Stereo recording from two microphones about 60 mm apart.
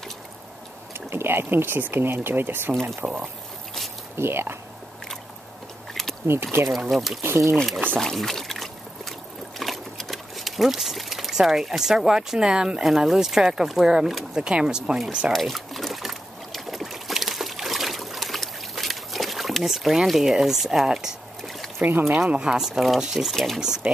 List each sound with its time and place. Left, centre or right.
0.9 s speech: right
3.0 s speech: centre
4.2 s speech: right
6.2 s speech: right
6.7 s speech: centre
7.2 s speech: right
7.5 s speech: centre
15.3 s trickle: centre
21.4 s a sound: centre
22.3 s speech: centre